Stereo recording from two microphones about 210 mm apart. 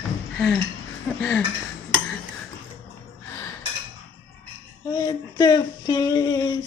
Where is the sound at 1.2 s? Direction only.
10° left (ahead or behind).